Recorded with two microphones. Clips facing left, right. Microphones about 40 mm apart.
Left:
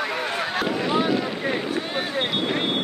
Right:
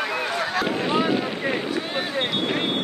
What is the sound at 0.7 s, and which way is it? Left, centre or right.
Boat, centre.